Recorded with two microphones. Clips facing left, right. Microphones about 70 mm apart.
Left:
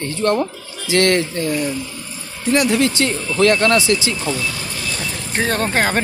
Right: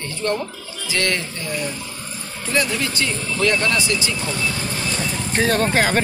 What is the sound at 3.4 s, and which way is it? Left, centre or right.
Speech, left.